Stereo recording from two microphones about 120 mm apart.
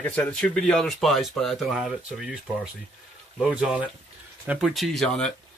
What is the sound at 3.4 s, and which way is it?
Speech, 10° right (ahead or behind).